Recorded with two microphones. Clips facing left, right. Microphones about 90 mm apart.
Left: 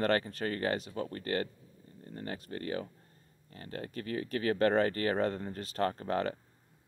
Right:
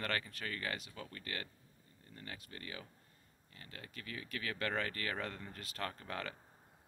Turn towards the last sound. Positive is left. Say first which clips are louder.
# left 11 dB
turn(degrees=35)  # may be behind; listen again after turning